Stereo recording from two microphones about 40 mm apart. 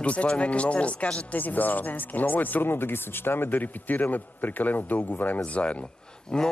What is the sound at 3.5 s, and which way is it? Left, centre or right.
Speech, left.